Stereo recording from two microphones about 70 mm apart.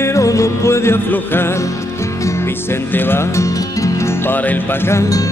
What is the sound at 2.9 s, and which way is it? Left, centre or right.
Music, left.